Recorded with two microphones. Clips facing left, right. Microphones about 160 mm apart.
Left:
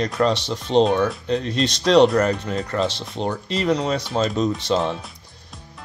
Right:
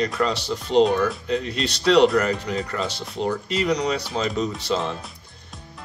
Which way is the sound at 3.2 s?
30° left (ahead or behind).